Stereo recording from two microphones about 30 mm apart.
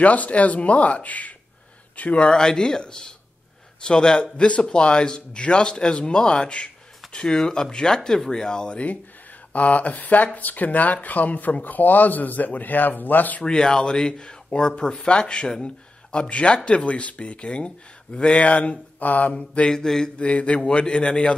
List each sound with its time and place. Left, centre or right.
0.0 s speech: left
2.1 s speech: left
2.4 s speech: left
7.2 s speech: left
9.5 s speech: left
11.6 s speech: left
13.4 s speech: left
15.6 s a sound: left
16.3 s speech: left
18.9 s speech: left
19.3 s speech: left
19.7 s speech: centre
20.2 s speech: left
20.6 s speech: left